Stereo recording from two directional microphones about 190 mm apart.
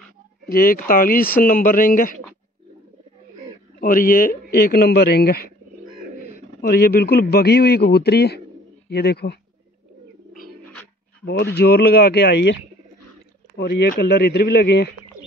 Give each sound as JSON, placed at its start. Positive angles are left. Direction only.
{"t": 0.5, "sound": "speech", "side_deg": 50}
{"t": 3.8, "sound": "a man's voice", "side_deg": 50}
{"t": 10.7, "sound": "a sound", "side_deg": 10}
{"t": 11.5, "sound": "a man's voice", "side_deg": 55}
{"t": 13.6, "sound": "a man's voice", "side_deg": 60}